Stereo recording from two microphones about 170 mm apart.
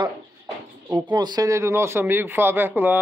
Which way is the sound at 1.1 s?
25° right (ahead or behind).